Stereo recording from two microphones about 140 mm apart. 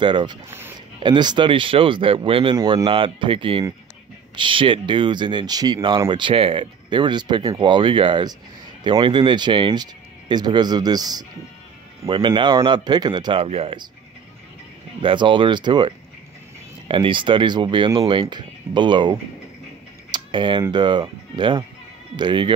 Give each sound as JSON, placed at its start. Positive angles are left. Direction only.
{"t": 0.0, "sound": "speech", "side_deg": -35}
{"t": 0.5, "sound": "speech", "side_deg": -15}
{"t": 0.9, "sound": "speech", "side_deg": -35}
{"t": 15.0, "sound": "speech", "side_deg": -35}
{"t": 20.1, "sound": "typing", "side_deg": -35}
{"t": 20.7, "sound": "speech", "side_deg": -35}